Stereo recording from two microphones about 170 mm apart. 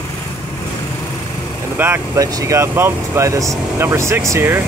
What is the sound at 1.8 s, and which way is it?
Speech, 15° right (ahead or behind).